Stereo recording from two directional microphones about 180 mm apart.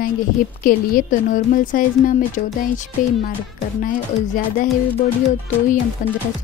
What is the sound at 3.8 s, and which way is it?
Speech, 45° left (ahead or behind).